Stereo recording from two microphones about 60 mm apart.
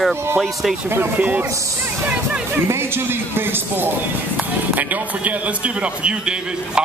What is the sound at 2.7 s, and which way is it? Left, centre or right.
Music, right.